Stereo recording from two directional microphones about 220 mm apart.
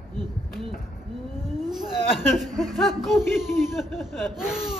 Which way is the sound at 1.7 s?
Centre (ahead or behind).